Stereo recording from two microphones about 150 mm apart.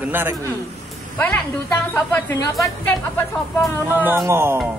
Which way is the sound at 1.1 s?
10° left (ahead or behind).